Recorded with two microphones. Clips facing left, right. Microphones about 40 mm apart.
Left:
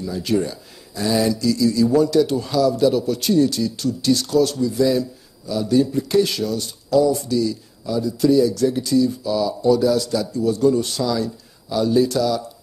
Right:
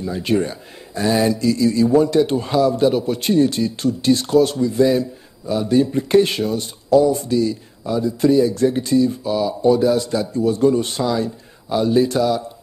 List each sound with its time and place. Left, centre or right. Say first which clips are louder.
0.0 s speech: right 2 dB; right